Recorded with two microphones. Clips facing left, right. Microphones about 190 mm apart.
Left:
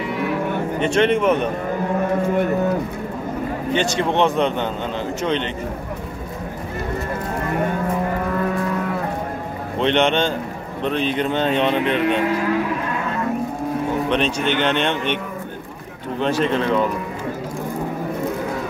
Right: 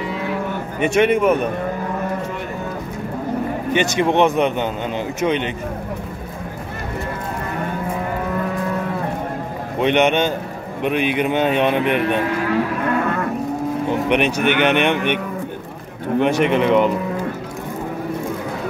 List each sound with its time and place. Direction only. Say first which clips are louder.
0.7 s speech: right 2 dB; 10° right (ahead or behind)
3.7 s speech: right 3 dB; 15° right (ahead or behind)
9.8 s speech: right 2 dB; 10° right (ahead or behind)
14.0 s speech: right 5 dB; 15° right (ahead or behind)
16.2 s speech: right 3 dB; 15° right (ahead or behind)